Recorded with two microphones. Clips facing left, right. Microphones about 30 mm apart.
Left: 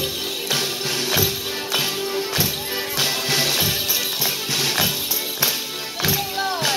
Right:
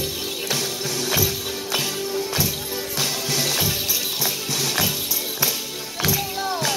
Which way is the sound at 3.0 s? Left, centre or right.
Left.